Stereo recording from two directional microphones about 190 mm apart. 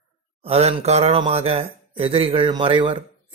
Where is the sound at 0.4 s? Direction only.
30° right (ahead or behind).